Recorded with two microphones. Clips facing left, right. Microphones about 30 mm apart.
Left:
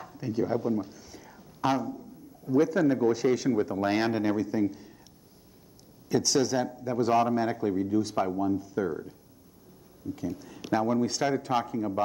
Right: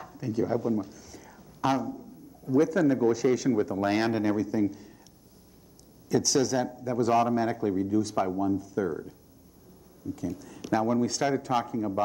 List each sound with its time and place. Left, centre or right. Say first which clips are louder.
0.2 s speech: even; centre
1.3 s a sound: even; centre
2.5 s speech: even; centre
3.7 s speech: even; centre
4.2 s speech: right 1 dB; centre
6.0 s speech: even; centre
8.3 s speech: even; centre
8.5 s speech: even; centre
10.0 s speech: even; centre
11.7 s speech: even; centre